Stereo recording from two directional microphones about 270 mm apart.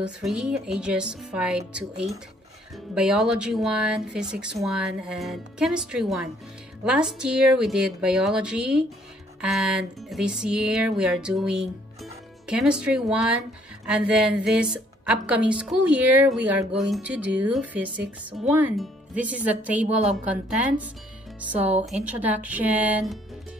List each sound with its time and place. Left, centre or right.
0.0 s speech: centre
22.0 s speech: centre